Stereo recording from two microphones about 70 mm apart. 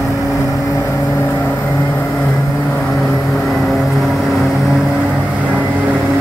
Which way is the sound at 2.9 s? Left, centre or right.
Centre.